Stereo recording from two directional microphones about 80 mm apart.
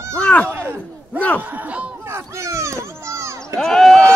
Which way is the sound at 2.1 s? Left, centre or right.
Right.